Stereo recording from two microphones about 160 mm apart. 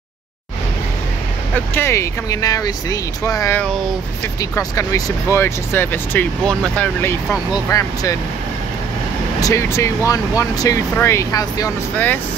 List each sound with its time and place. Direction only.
1.5 s speech: 15° left (ahead or behind)
7.5 s speech: 20° left (ahead or behind)
9.4 s speech: 20° left (ahead or behind)